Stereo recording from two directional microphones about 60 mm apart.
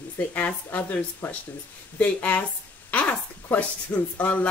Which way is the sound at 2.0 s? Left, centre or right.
Left.